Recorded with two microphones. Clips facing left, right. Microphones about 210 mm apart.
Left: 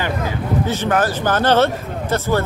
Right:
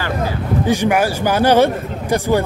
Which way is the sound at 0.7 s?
10° right (ahead or behind).